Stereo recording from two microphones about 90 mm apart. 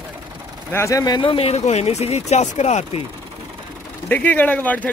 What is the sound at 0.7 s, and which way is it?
Speech, 35° left (ahead or behind).